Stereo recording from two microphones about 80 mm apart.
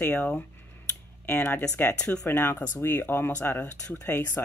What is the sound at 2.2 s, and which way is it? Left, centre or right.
Speech, left.